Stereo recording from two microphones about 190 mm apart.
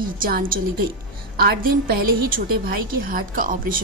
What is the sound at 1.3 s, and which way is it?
A woman's voice, 55° right (ahead or behind).